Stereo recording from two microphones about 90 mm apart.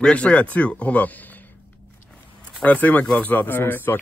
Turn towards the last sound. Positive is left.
turn(degrees=25)  # may be behind; listen again after turning